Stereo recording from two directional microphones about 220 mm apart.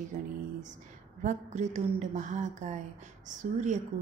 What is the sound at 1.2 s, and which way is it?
A woman's voice, 35° right (ahead or behind).